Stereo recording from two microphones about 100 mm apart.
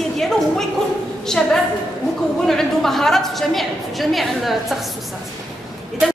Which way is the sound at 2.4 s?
5° left (ahead or behind).